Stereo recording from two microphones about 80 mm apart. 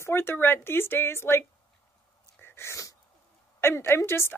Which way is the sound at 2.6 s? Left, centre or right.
Left.